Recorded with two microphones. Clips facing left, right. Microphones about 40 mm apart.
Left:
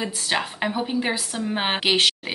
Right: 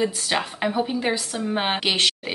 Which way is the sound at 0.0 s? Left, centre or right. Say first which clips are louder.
Right 2 dB; centre.